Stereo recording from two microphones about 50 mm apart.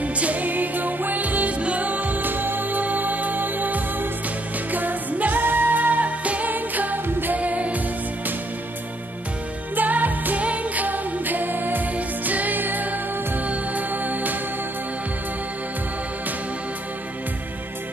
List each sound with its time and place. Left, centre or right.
0.0 s music: right
9.8 s music: right